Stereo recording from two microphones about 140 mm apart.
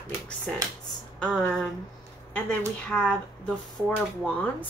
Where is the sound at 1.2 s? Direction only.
5° left (ahead or behind).